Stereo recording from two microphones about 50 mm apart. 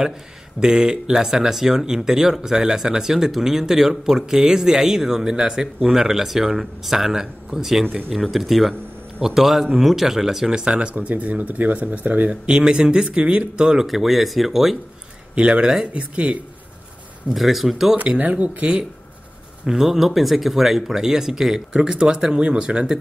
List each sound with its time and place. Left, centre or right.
0.6 s speech: centre
10.6 s speech: right
12.4 s speech: centre
13.7 s speech: centre
15.3 s speech: right
15.6 s speech: centre
15.9 s speech: right
17.3 s speech: centre
17.9 s speech: right
19.6 s speech: centre